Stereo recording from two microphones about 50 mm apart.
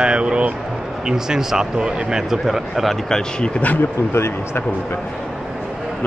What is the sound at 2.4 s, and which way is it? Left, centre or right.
Speech, centre.